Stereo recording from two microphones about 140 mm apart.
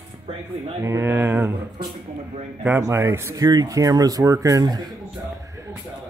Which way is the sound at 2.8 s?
20° right (ahead or behind).